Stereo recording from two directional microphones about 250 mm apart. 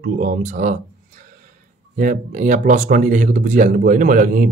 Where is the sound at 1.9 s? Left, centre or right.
Right.